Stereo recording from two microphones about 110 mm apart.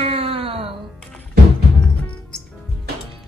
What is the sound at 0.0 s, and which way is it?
Music, 60° right (ahead or behind).